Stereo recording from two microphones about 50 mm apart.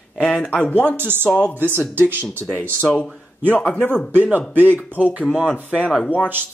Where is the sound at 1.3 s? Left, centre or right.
Left.